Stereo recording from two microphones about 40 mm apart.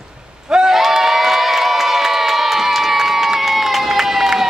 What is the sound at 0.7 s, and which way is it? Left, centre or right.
Crowd, centre.